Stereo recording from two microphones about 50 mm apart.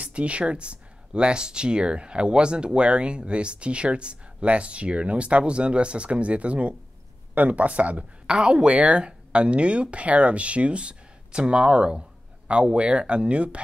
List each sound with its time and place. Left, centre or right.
0.0 s speech: right
8.3 s speech: centre